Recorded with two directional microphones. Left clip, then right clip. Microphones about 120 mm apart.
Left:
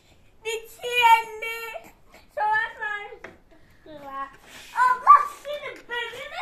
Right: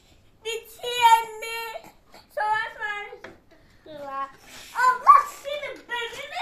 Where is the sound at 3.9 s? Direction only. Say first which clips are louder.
Right 2 dB; 45° right (ahead or behind).